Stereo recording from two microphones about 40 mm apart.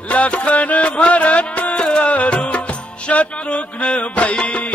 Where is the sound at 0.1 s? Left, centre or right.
Left.